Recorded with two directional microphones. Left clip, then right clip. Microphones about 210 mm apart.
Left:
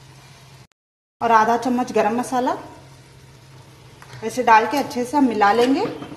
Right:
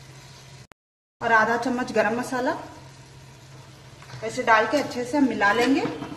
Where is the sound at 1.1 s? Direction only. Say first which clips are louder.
Left 4 dB; 20° left (ahead or behind).